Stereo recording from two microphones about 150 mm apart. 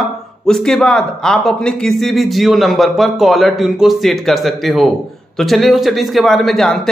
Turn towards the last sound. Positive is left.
turn(degrees=0)  # may be behind; listen again after turning